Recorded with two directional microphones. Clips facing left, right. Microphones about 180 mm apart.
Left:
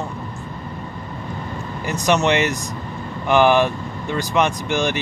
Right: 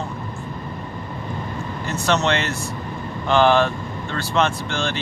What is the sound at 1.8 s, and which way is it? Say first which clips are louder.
Speech: left 3 dB; 15° left (ahead or behind).